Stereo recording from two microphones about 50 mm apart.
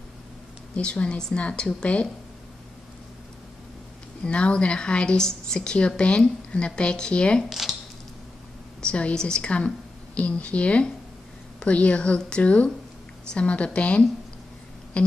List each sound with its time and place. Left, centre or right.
0.7 s a woman's voice: left
4.2 s a woman's voice: left
7.4 s a sound: centre
8.8 s a woman's voice: left
15.0 s music: left